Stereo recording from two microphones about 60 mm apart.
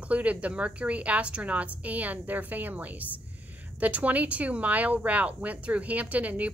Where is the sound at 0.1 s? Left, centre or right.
Right.